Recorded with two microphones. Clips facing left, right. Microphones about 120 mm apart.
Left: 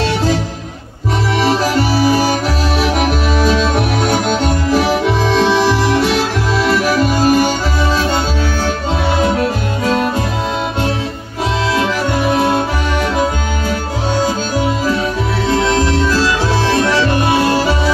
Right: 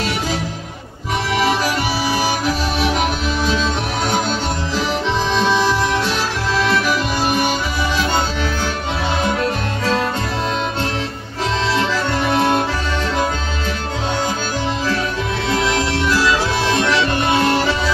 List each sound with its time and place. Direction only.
1.4 s music: 45° left (ahead or behind)
4.8 s music: 10° left (ahead or behind)
7.0 s music: 40° left (ahead or behind)
9.3 s music: 20° left (ahead or behind)
11.8 s music: 15° left (ahead or behind)
15.5 s music: 35° left (ahead or behind)
16.7 s music: 25° left (ahead or behind)